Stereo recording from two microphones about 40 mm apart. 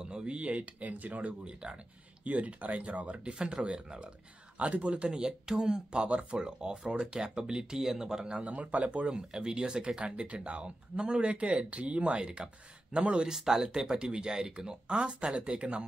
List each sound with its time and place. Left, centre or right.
0.0 s a sound: right
0.4 s speech: right
1.4 s speech: right
2.2 s speech: right
4.6 s speech: right
7.7 s speech: centre
8.4 s speech: right
9.0 s speech: centre
10.0 s speech: right
13.3 s speech: centre; by 15.8 s right